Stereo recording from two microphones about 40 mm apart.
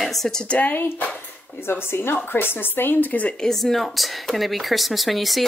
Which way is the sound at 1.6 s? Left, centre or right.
Left.